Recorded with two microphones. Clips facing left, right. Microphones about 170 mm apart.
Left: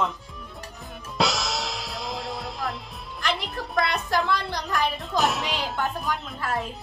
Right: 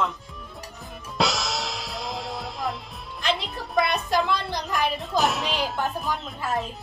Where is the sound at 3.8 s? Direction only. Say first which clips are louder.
Right 1 dB; 15° right (ahead or behind).